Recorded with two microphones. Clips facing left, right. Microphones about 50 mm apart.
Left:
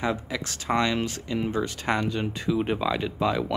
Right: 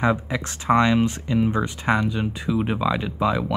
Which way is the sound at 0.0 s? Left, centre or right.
Right.